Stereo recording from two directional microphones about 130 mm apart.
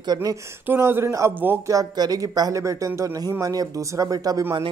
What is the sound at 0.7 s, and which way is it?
Speech, 20° right (ahead or behind).